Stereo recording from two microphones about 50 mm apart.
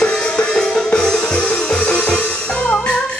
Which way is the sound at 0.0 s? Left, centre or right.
Centre.